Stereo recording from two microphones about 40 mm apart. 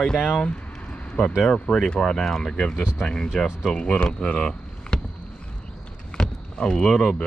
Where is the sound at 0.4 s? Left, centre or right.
Left.